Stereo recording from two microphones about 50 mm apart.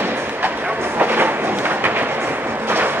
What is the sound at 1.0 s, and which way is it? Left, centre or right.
Train, right.